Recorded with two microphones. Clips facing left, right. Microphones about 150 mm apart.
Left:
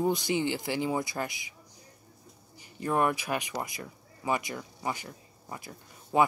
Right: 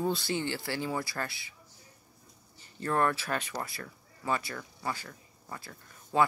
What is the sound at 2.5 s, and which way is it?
Speech, 15° left (ahead or behind).